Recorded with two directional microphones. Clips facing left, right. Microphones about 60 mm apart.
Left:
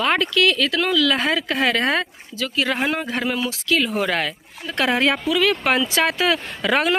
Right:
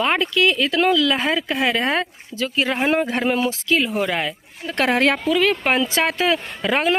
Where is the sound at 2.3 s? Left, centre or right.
Right.